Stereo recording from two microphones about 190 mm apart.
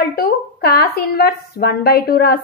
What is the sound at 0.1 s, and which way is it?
A woman's voice, 55° left (ahead or behind).